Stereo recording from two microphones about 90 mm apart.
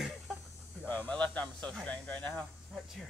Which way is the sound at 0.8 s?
20° left (ahead or behind).